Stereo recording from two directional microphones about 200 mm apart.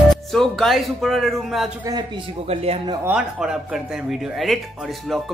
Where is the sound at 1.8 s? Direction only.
20° right (ahead or behind).